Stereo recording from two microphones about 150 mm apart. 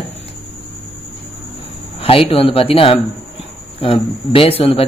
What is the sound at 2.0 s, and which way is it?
A man's voice, 40° left (ahead or behind).